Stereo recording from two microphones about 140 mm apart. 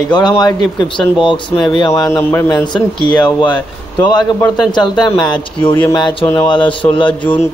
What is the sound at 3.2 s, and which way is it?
Speech, 30° left (ahead or behind).